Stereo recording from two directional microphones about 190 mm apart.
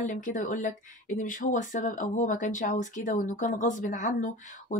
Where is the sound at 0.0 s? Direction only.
40° left (ahead or behind).